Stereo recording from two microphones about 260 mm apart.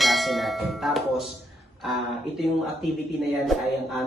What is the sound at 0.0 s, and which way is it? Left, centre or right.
Speech, centre.